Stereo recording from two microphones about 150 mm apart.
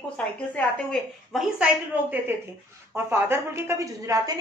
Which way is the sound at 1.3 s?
10° right (ahead or behind).